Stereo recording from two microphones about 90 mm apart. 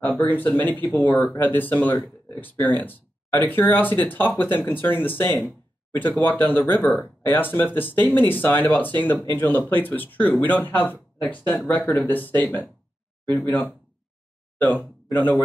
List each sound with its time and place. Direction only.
0.2 s speech: 20° left (ahead or behind)